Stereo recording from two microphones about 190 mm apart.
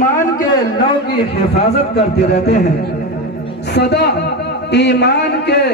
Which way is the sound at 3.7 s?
60° left (ahead or behind).